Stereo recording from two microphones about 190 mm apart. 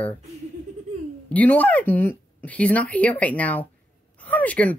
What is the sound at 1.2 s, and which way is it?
Speech, 10° left (ahead or behind).